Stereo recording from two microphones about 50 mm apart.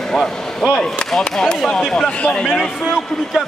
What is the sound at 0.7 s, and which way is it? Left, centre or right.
A man's voice, centre.